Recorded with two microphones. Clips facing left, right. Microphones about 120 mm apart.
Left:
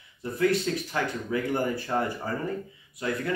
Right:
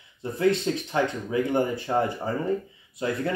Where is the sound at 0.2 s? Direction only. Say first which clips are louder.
Right 2 dB; 25° right (ahead or behind).